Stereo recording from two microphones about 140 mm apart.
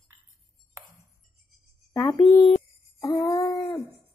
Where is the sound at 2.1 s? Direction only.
35° left (ahead or behind).